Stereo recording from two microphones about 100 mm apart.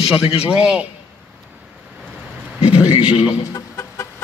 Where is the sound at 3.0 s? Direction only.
70° left (ahead or behind).